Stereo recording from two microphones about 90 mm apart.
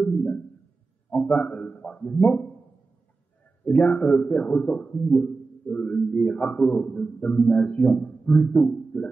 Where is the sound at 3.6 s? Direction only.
20° left (ahead or behind).